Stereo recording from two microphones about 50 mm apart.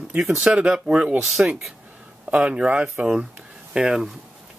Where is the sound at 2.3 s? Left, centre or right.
Right.